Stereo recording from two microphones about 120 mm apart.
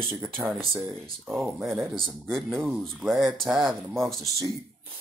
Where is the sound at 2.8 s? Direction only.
Centre (ahead or behind).